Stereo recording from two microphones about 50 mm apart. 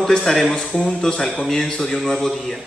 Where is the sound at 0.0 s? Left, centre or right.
Centre.